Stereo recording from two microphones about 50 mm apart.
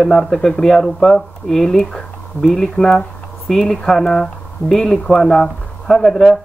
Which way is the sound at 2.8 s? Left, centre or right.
Centre.